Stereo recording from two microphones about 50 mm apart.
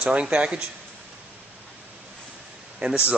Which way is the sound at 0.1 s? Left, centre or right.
Right.